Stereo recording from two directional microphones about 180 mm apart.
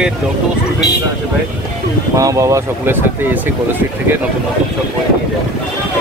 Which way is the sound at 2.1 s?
20° right (ahead or behind).